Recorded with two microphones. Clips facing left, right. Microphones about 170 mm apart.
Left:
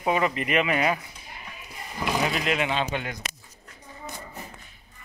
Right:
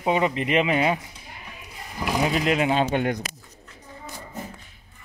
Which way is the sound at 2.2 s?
35° right (ahead or behind).